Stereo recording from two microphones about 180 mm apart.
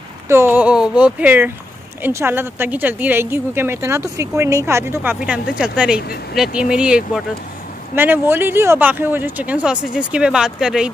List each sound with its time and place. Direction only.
0.3 s speech: 10° right (ahead or behind)